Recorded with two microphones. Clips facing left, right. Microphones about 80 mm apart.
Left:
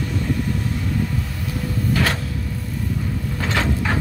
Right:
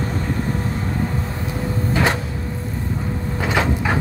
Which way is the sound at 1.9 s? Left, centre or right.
Right.